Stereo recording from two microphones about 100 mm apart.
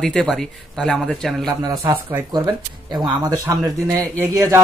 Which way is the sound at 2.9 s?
45° right (ahead or behind).